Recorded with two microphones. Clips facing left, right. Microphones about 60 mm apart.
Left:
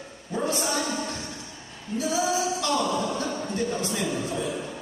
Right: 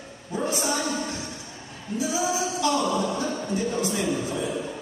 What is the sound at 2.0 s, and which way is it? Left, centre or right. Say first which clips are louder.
Singing: left 1 dB; centre.